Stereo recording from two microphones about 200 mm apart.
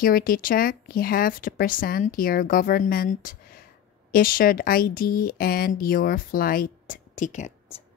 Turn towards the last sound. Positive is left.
turn(degrees=35)  # may be behind; listen again after turning